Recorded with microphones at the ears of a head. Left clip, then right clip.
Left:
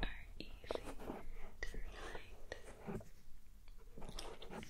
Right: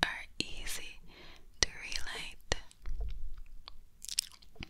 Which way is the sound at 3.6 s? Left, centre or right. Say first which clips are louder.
Right 10 dB; right.